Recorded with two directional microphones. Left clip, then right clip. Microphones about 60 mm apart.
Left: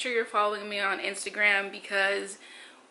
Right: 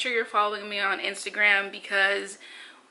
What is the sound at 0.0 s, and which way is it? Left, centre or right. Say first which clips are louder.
Speech: right 2 dB; centre.